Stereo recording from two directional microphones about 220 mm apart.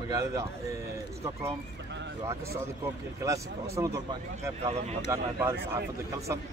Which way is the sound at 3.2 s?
15° right (ahead or behind).